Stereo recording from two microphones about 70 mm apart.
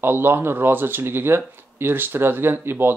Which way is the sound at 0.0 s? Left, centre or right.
Right.